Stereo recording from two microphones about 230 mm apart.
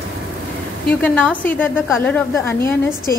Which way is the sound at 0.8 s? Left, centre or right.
Centre.